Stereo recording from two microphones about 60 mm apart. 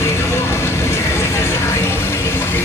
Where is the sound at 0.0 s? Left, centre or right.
Left.